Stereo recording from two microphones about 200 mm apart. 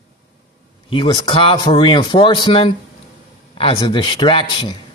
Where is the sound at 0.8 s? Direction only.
25° left (ahead or behind).